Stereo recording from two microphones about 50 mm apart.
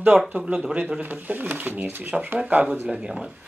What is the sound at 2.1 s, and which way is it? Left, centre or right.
Speech, centre.